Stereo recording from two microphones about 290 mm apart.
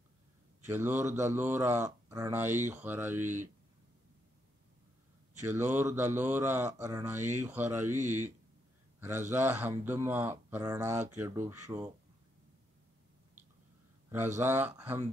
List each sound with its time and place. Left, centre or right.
0.7 s speech: centre
3.2 s speech: right
5.4 s speech: centre
8.0 s speech: right
9.4 s speech: centre
14.1 s speech: centre